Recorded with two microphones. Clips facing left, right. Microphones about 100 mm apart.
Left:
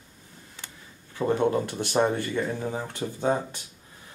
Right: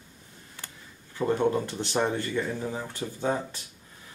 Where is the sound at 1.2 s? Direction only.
15° left (ahead or behind).